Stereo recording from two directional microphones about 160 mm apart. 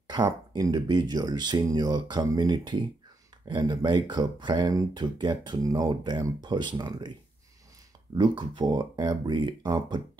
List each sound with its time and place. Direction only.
0.1 s speech: 25° right (ahead or behind)
8.2 s speech: 30° right (ahead or behind)